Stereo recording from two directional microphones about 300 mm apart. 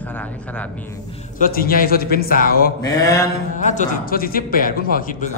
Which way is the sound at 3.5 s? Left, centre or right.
Left.